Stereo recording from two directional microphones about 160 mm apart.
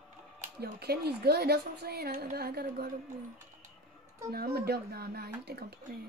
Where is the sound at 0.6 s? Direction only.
85° right.